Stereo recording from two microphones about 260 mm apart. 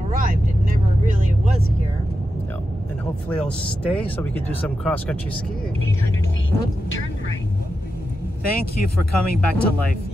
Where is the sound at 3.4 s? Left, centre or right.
Centre.